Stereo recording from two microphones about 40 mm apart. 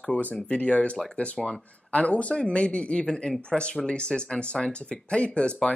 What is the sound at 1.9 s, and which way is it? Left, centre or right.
Speech, left.